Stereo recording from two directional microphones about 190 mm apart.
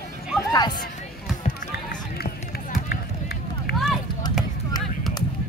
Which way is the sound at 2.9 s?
55° left (ahead or behind).